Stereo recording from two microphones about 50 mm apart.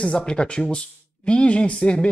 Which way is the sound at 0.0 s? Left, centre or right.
Centre.